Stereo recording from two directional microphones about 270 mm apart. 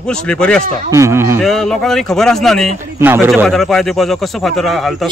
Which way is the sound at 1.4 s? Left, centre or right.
Centre.